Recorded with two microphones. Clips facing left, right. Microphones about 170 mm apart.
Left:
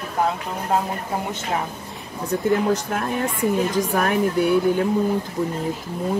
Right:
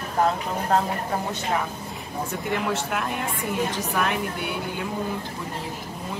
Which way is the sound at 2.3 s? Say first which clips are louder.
Left 8 dB; 40° left (ahead or behind).